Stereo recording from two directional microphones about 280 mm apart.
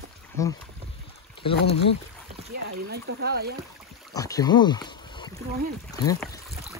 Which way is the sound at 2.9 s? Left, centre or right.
Right.